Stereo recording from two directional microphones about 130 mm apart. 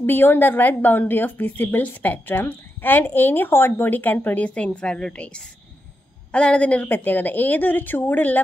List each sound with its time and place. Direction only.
0.0 s a woman's voice: 15° left (ahead or behind)